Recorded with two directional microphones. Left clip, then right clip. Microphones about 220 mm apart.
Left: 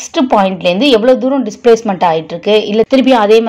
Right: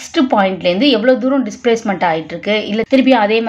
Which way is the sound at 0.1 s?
20° left (ahead or behind).